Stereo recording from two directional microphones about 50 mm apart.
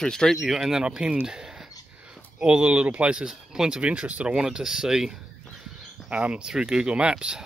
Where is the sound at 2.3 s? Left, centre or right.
Right.